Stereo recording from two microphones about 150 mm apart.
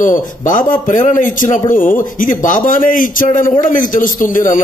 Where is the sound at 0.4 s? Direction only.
60° left (ahead or behind).